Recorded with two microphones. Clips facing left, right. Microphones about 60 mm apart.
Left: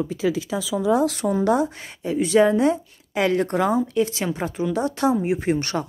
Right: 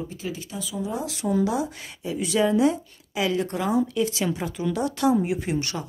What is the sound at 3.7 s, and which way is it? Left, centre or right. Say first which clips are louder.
A woman's voice: left 2 dB; left.